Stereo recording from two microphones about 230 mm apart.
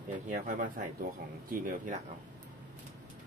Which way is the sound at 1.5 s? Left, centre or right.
Right.